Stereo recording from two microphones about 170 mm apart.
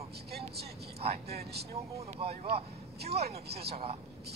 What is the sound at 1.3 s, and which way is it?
Speech, 70° right (ahead or behind).